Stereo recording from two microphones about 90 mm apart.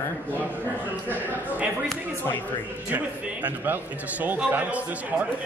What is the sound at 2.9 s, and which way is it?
Speech, 20° right (ahead or behind).